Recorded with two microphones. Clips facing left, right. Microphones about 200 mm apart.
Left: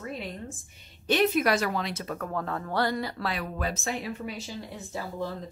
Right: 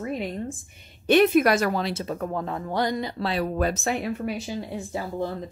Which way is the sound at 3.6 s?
50° right (ahead or behind).